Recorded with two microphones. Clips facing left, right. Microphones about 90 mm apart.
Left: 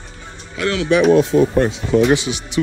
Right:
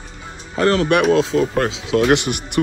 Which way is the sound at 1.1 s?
90° right.